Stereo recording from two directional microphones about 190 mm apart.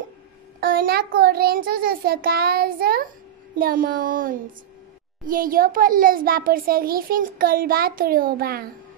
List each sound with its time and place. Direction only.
0.6 s a child's voice: 50° right (ahead or behind)